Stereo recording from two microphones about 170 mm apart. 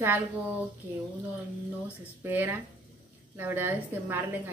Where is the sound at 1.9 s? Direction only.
10° right (ahead or behind).